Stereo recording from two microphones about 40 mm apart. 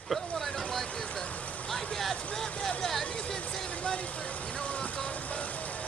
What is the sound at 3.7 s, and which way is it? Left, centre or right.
Vehicle, left.